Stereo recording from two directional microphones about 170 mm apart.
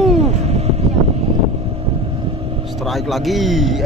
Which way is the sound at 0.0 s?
40° right (ahead or behind).